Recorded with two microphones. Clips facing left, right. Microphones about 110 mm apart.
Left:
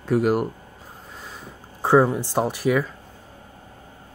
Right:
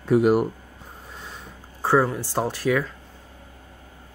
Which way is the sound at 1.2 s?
Centre (ahead or behind).